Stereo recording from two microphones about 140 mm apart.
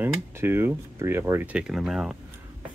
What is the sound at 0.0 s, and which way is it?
Speech, 15° right (ahead or behind).